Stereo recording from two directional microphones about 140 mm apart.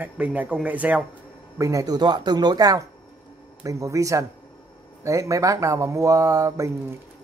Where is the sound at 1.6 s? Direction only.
25° right (ahead or behind).